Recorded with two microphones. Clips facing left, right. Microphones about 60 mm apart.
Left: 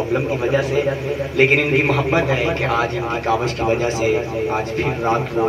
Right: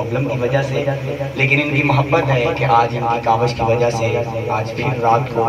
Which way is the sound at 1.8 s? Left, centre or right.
Centre.